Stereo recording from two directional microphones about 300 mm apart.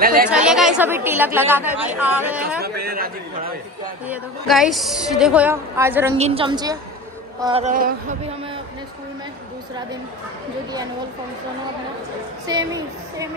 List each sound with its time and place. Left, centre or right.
0.0 s speech: right
0.3 s a woman's voice: centre
2.6 s a man's voice: right
4.1 s a woman's voice: centre
6.1 s a woman's voice: centre
12.4 s a woman's voice: centre